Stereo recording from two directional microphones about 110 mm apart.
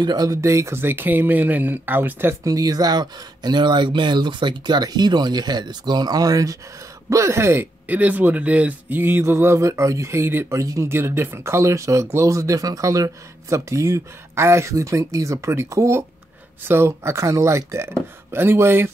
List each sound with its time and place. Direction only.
0.0 s speech: 35° right (ahead or behind); by 2.3 s 20° right (ahead or behind)
2.4 s speech: 35° right (ahead or behind)